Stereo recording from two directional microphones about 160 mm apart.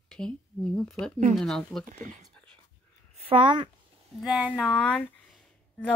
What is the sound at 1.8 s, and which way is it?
Speech, 50° right (ahead or behind).